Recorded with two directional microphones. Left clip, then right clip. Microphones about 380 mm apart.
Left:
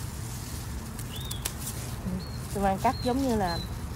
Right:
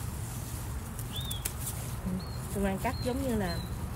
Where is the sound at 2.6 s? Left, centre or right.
Centre.